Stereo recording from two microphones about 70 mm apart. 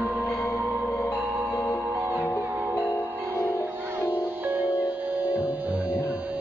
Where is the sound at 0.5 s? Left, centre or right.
Right.